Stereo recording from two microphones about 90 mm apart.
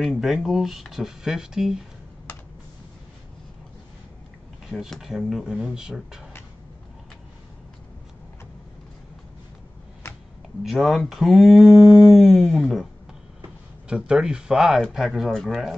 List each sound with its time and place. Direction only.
0.0 s speech: centre (ahead or behind)
4.6 s speech: centre (ahead or behind)
10.0 s a sound: 30° left (ahead or behind)
10.6 s speech: centre (ahead or behind)
13.8 s speech: 10° right (ahead or behind)